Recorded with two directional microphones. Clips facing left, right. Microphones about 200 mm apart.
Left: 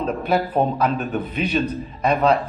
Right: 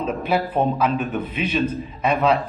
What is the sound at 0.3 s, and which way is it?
Speech, 5° right (ahead or behind).